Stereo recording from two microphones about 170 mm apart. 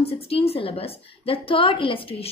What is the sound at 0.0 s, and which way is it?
A woman's voice, 35° left (ahead or behind).